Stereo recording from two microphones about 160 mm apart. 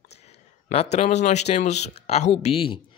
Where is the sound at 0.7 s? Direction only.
40° left (ahead or behind).